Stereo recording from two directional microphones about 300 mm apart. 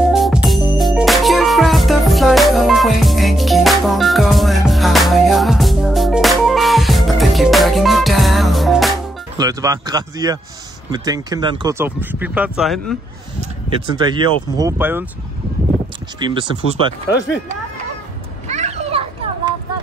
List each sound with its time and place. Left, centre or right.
0.0 s music: centre
9.4 s a sound: centre
10.9 s speech: centre
13.9 s speech: centre
16.2 s speech: centre
18.5 s children playing: right